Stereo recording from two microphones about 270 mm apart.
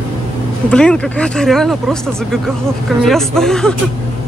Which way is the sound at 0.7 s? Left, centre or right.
Centre.